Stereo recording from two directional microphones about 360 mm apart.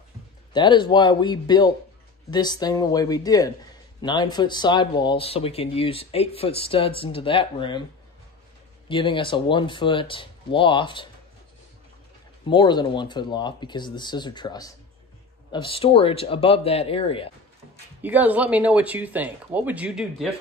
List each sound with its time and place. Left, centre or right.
0.5 s speech: centre
8.8 s speech: centre
12.4 s speech: centre
18.0 s speech: centre